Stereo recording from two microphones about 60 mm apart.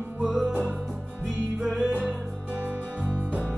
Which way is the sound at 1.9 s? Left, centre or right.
Centre.